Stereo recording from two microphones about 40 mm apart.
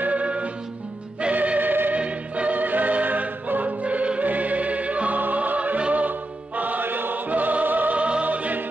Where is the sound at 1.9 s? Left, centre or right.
Right.